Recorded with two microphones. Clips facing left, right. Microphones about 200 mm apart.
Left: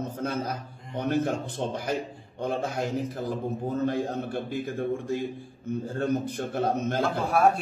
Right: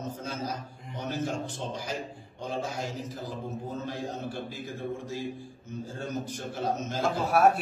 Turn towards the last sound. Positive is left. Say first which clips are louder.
# even
turn(degrees=-5)  # may be behind; listen again after turning